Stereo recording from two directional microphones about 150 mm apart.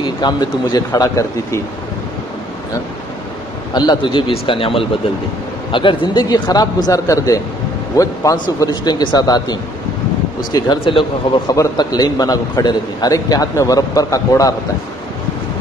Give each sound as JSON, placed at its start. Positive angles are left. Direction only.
{"t": 0.0, "sound": "a man's voice", "side_deg": 30}
{"t": 3.7, "sound": "a man's voice", "side_deg": 30}